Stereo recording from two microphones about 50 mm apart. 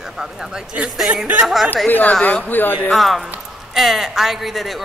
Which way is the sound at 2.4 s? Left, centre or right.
Left.